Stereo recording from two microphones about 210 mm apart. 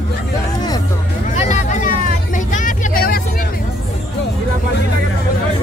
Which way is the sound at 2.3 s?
35° left (ahead or behind).